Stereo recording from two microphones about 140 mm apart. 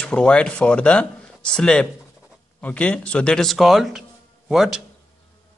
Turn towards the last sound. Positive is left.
turn(degrees=0)  # may be behind; listen again after turning